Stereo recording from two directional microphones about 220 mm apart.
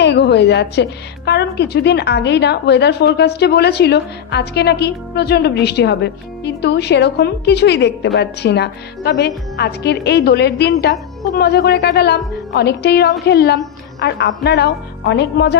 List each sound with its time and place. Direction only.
0.0 s a woman's voice: 50° left (ahead or behind)